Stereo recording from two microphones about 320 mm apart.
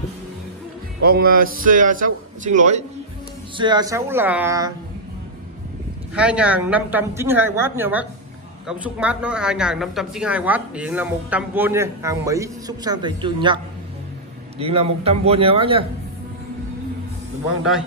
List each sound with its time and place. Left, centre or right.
1.0 s a man's voice: right; by 4.7 s centre
6.1 s speech: centre
14.6 s speech: centre